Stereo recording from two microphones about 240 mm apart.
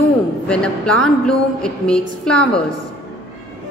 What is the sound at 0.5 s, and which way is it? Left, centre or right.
Speech, centre.